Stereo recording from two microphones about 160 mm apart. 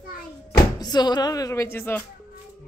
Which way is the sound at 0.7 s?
25° left (ahead or behind).